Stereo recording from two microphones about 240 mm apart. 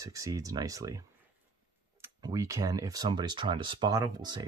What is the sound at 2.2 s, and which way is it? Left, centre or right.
Speech, centre.